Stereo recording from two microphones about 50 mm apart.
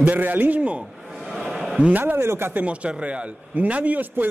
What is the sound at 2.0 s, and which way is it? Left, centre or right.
Speech, right.